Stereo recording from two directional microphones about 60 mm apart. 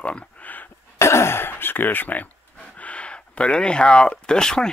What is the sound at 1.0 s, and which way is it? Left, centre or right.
Speech, left.